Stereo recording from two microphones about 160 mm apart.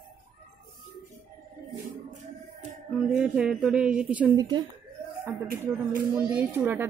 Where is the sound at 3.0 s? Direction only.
5° right (ahead or behind).